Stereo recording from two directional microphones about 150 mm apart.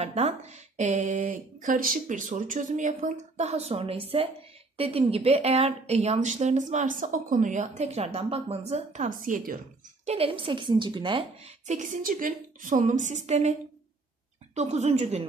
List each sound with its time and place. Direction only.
0.0 s a woman's voice: 45° right (ahead or behind); by 9.6 s 65° right (ahead or behind)
10.0 s a woman's voice: 40° right (ahead or behind)
11.4 s a woman's voice: 50° right (ahead or behind)